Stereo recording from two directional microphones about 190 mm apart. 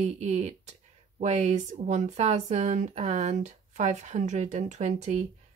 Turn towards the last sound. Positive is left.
turn(degrees=-40)  # may be behind; listen again after turning